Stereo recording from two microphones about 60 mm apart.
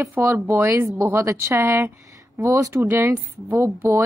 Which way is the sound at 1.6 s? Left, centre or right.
Right.